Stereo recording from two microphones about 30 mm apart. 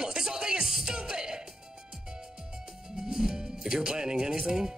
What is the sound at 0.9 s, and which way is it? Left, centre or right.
Music, right.